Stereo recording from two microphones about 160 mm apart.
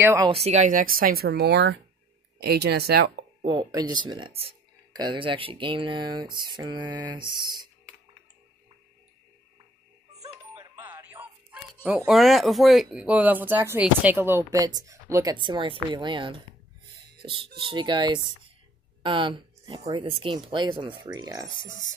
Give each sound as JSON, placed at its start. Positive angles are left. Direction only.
{"t": 0.0, "sound": "speech", "side_deg": -20}
{"t": 0.3, "sound": "speech", "side_deg": -40}
{"t": 3.4, "sound": "speech", "side_deg": -25}
{"t": 10.6, "sound": "speech", "side_deg": -10}
{"t": 15.3, "sound": "speech", "side_deg": -30}